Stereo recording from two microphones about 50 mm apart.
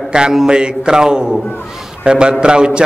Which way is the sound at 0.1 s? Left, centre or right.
Centre.